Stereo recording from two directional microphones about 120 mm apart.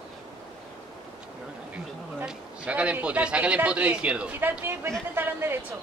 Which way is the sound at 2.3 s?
10° right (ahead or behind).